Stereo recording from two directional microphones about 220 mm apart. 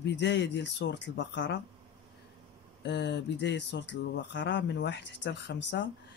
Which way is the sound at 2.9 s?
50° left (ahead or behind).